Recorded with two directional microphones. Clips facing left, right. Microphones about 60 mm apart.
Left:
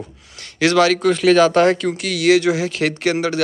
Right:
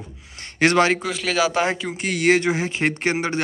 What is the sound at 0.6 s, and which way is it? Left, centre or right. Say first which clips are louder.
Speech: left 2 dB; right.